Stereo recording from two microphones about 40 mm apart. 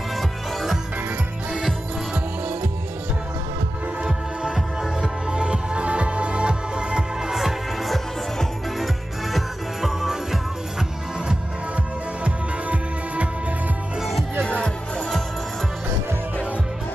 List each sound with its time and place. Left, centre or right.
0.1 s music: centre
4.0 s music: right
7.2 s music: centre
12.3 s music: right
14.4 s music: left